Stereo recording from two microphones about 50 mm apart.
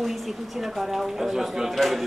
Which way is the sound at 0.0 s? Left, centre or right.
Centre.